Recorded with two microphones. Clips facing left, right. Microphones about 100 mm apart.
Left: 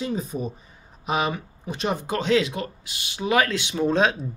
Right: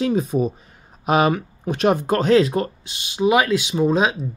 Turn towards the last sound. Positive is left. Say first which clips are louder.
# right 3 dB
turn(degrees=-5)  # may be behind; listen again after turning